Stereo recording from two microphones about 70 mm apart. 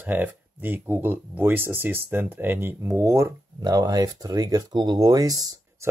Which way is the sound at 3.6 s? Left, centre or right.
Right.